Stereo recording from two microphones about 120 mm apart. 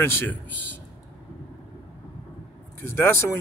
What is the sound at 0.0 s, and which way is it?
Speech, 20° left (ahead or behind).